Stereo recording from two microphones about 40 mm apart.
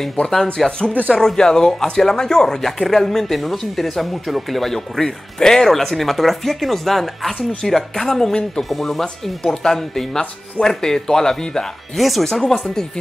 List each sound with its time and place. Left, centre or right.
0.7 s speech: left; by 9.0 s centre
9.4 s speech: centre
12.0 s speech: centre
12.3 s speech: centre